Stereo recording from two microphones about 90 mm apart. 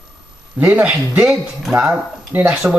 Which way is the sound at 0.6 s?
15° right (ahead or behind).